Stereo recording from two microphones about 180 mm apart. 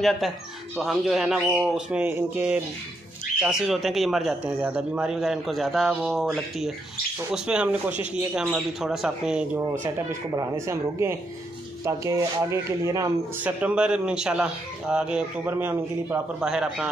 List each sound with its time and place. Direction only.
0.0 s a man's voice: centre (ahead or behind)
9.9 s speech: 15° right (ahead or behind)